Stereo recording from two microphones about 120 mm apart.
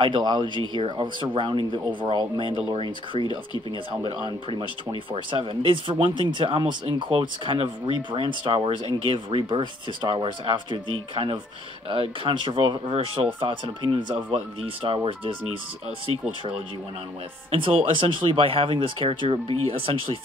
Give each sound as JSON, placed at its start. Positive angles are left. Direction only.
{"t": 0.0, "sound": "speech", "side_deg": -40}